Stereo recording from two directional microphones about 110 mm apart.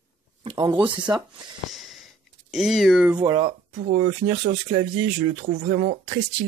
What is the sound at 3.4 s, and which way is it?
Speech, 80° right.